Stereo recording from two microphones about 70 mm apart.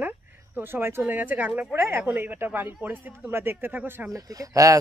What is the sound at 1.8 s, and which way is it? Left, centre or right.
Speech, right.